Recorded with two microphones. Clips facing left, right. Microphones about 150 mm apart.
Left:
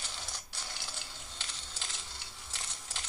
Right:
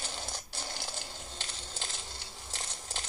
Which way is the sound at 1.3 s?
35° right (ahead or behind).